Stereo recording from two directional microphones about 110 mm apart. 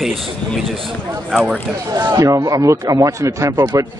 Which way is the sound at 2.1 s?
30° right (ahead or behind).